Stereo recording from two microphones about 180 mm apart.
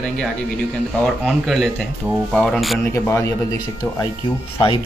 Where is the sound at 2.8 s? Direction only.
15° left (ahead or behind).